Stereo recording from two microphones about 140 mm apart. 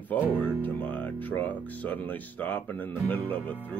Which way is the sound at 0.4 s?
10° left (ahead or behind).